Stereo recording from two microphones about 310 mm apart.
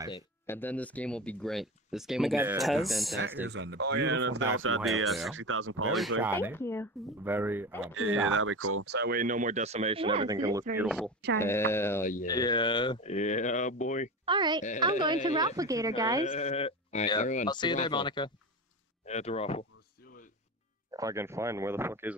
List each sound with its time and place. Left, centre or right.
0.1 s speech: centre
3.4 s speech: right
4.8 s speech: centre
5.4 s speech: right
6.5 s speech: centre
7.2 s speech: centre
7.9 s speech: right; by 12.0 s centre
12.0 s speech: left
12.3 s speech: centre
14.2 s speech: centre
16.3 s speech: centre
20.9 s speech: centre